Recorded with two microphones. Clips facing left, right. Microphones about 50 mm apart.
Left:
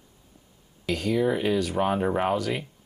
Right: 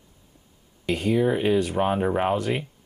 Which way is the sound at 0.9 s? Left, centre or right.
Centre.